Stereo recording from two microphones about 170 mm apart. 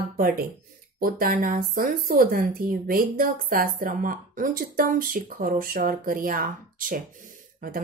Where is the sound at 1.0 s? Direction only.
55° right (ahead or behind).